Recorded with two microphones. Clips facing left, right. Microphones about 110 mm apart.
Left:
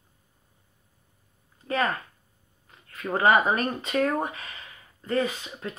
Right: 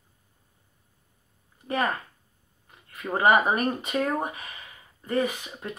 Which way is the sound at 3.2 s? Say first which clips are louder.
Even; 15° right (ahead or behind).